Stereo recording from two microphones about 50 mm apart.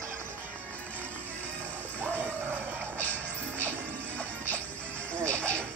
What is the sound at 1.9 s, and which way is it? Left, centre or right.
Music, right.